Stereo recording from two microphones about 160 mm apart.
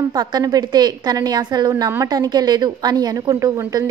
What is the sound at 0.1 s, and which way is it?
A woman's voice, 25° right (ahead or behind).